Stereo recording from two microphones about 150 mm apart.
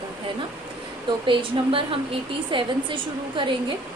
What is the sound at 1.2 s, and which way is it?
A woman's voice, 35° right (ahead or behind).